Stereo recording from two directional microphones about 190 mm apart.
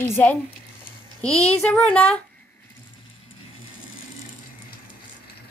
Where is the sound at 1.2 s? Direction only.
35° left (ahead or behind).